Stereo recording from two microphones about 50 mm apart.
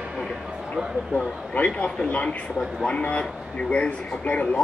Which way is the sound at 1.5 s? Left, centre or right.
Left.